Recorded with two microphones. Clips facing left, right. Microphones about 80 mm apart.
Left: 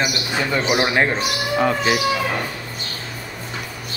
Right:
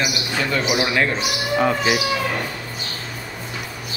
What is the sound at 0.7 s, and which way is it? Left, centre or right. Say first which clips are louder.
Speech: left 3 dB; left.